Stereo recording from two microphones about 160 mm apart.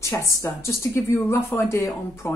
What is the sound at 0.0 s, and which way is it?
A woman's voice, 20° left (ahead or behind).